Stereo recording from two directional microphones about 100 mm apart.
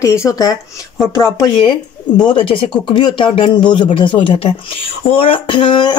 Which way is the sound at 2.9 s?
50° left (ahead or behind).